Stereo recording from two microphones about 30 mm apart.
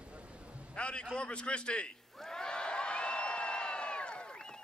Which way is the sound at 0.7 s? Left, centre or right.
Left.